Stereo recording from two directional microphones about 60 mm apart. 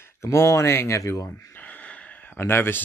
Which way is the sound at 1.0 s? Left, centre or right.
Left.